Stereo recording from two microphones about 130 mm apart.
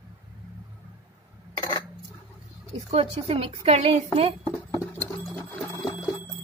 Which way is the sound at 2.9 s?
45° right (ahead or behind).